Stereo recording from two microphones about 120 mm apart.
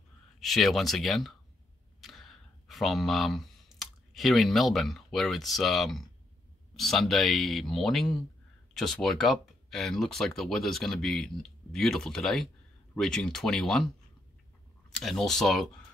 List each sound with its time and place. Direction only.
0.4 s speech: centre (ahead or behind)
2.0 s a sound: centre (ahead or behind)
6.7 s speech: centre (ahead or behind)
15.0 s speech: centre (ahead or behind)